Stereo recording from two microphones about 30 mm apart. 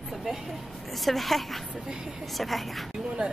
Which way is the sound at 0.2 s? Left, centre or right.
Centre.